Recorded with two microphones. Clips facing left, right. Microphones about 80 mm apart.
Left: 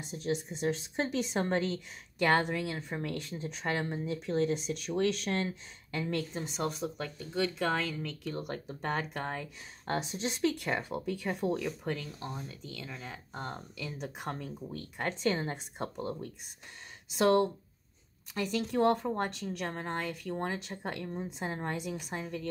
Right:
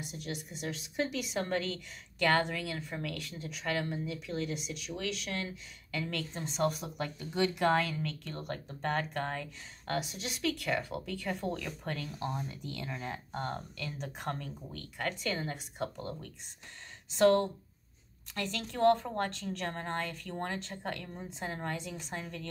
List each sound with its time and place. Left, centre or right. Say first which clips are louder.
0.0 s a woman's voice: left 7 dB; left
6.3 s a woman's voice: right 3 dB; centre
9.9 s a woman's voice: left 2 dB; left; by 12.1 s centre
12.2 s speech: right 4 dB; centre
13.3 s a woman's voice: right 1 dB; centre